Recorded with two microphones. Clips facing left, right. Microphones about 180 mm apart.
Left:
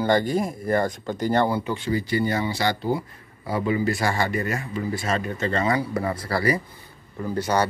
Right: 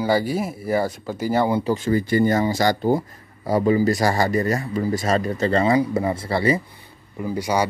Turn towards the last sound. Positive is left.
turn(degrees=-10)  # may be behind; listen again after turning